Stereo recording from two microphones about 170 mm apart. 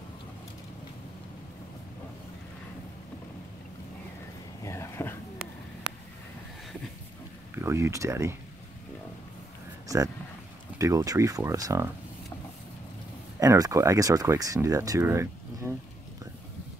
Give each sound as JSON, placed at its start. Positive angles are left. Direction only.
{"t": 4.6, "sound": "a sound", "side_deg": 15}
{"t": 7.5, "sound": "speech", "side_deg": -15}
{"t": 10.8, "sound": "speech", "side_deg": -20}
{"t": 13.4, "sound": "speech", "side_deg": -20}